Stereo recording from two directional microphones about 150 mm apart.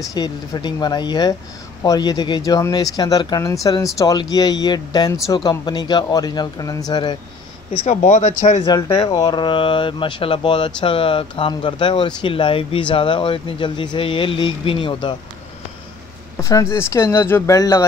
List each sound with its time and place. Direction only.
0.1 s speech: 30° left (ahead or behind)
7.7 s speech: 50° left (ahead or behind)
8.6 s speech: 25° left (ahead or behind)
16.3 s speech: 20° left (ahead or behind)